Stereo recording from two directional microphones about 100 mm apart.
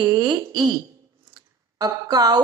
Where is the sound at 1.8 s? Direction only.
40° right (ahead or behind).